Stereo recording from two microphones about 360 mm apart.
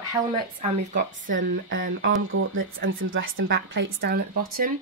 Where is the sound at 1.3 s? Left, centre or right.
Right.